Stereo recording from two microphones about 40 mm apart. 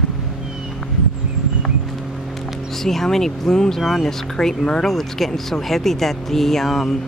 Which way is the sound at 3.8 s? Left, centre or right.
Centre.